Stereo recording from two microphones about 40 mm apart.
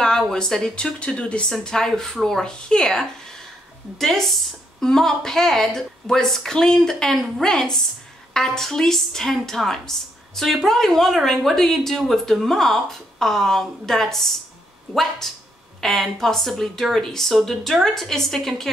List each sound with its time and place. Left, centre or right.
0.3 s a woman's voice: centre
0.7 s speech: left
1.6 s a woman's voice: centre
4.0 s a woman's voice: centre